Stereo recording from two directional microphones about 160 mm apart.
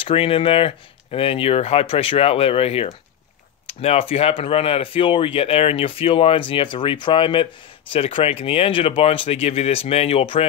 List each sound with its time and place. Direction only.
0.0 s speech: 35° left (ahead or behind)